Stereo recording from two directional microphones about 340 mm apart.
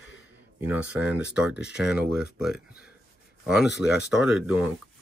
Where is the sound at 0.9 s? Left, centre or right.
Centre.